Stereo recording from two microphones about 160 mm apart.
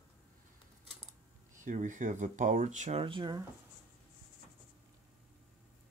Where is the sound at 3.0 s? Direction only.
30° right (ahead or behind).